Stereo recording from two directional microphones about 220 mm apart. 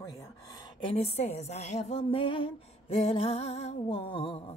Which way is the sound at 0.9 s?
25° left (ahead or behind).